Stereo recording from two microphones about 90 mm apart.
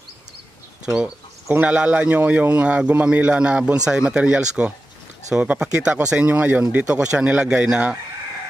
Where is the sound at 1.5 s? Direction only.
15° right (ahead or behind).